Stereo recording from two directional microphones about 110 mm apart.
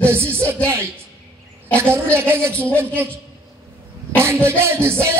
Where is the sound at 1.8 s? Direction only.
25° right (ahead or behind).